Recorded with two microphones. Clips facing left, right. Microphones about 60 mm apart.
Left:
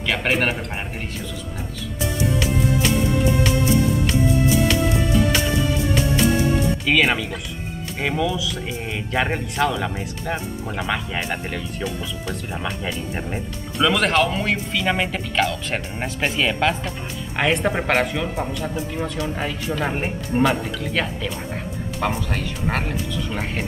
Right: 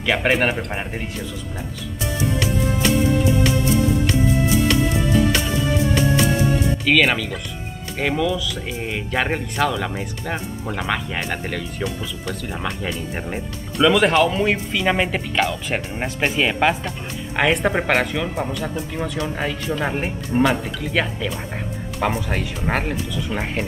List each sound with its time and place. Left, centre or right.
0.0 s speech: centre
2.1 s music: centre
6.9 s speech: centre